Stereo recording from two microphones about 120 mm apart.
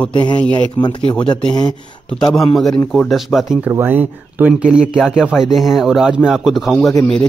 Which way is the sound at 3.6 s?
15° right (ahead or behind).